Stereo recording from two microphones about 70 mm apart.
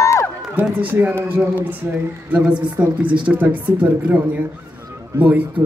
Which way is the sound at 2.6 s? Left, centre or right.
Right.